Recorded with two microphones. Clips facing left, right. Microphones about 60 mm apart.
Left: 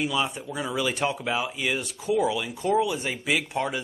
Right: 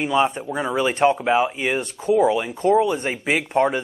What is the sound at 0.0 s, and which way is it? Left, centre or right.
Speech, right.